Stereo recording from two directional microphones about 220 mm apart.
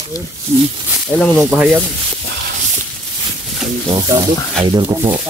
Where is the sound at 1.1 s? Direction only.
Centre (ahead or behind).